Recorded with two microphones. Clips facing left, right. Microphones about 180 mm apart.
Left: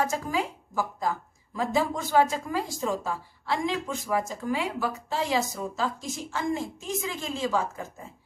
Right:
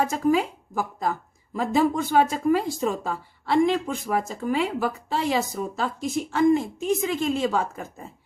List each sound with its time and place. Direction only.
0.0 s a woman's voice: 60° right (ahead or behind)